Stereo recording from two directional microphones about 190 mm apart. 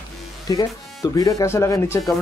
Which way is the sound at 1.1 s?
15° left (ahead or behind).